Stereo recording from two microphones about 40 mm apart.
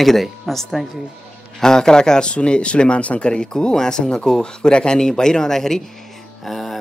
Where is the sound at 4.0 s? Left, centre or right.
Left.